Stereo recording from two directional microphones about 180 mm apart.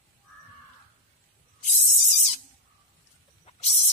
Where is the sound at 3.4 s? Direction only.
35° left (ahead or behind).